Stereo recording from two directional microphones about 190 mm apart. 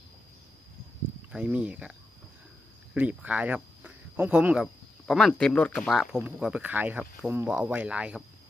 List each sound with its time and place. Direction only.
1.3 s speech: 5° right (ahead or behind)